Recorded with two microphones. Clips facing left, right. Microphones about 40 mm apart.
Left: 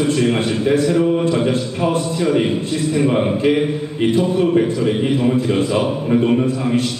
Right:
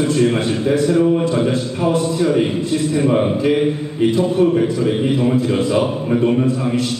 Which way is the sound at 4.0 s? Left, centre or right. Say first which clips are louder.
Right 2 dB; left.